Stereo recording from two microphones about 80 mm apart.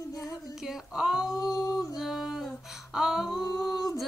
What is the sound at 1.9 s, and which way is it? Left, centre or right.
Female singing, centre.